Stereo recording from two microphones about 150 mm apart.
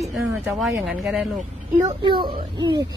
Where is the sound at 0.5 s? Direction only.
Centre (ahead or behind).